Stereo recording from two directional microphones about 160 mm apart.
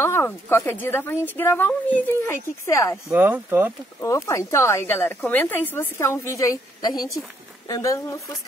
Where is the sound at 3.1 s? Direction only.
15° right (ahead or behind).